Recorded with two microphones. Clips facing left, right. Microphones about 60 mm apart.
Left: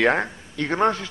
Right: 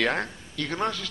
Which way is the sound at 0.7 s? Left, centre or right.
Left.